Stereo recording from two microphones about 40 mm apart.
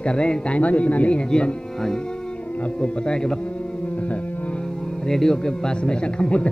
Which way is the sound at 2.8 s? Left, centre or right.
Left.